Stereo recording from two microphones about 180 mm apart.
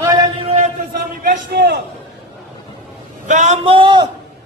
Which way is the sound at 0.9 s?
50° right (ahead or behind).